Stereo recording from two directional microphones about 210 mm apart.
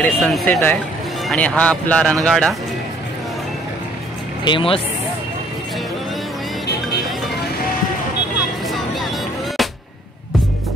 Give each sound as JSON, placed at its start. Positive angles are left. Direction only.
{"t": 0.0, "sound": "a man's voice", "side_deg": 5}
{"t": 4.5, "sound": "speech", "side_deg": 25}